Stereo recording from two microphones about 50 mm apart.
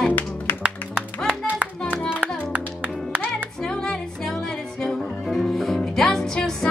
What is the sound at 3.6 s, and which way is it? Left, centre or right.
Music, centre.